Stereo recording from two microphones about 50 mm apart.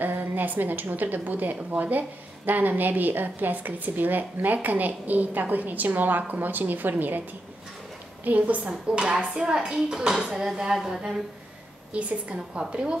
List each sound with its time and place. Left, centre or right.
0.0 s a woman's voice: right
8.8 s speech: centre
11.9 s a woman's voice: right